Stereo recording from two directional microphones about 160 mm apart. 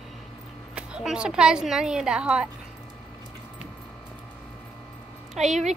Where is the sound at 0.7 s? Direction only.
5° right (ahead or behind).